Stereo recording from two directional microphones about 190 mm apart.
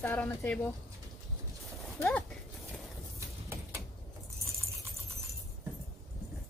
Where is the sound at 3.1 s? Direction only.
15° right (ahead or behind).